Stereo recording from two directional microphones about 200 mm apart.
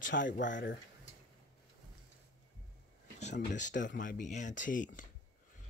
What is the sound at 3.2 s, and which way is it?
Speech, 35° left (ahead or behind).